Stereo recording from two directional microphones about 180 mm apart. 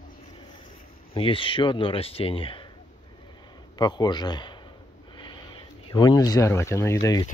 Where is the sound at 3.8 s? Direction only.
25° left (ahead or behind).